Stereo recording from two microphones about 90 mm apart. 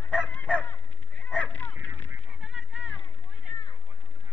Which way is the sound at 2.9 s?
20° left (ahead or behind).